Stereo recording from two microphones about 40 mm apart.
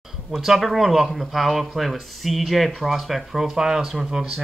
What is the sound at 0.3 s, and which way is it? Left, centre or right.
Speech, centre.